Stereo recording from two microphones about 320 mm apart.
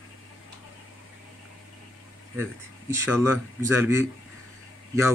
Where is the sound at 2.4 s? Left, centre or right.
Centre.